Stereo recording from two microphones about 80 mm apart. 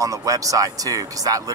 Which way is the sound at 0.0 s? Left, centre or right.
Right.